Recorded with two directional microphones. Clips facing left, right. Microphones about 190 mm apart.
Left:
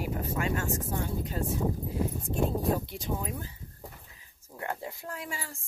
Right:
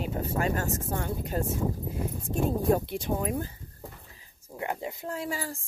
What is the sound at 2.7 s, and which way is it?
Speech, 55° right (ahead or behind).